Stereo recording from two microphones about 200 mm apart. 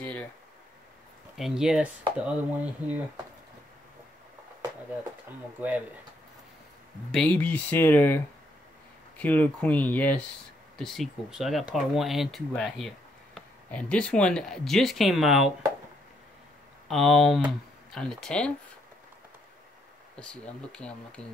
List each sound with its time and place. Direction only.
0.0 s speech: 5° left (ahead or behind)
1.3 s speech: centre (ahead or behind)
7.1 s speech: 5° left (ahead or behind)
9.2 s speech: 10° left (ahead or behind)
16.8 s speech: centre (ahead or behind)
20.2 s speech: 5° left (ahead or behind)